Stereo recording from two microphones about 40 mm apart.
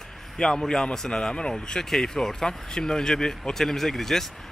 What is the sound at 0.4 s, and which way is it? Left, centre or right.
Speech, centre.